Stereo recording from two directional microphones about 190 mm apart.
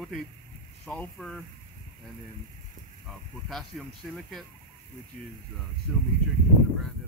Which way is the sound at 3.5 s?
Centre (ahead or behind).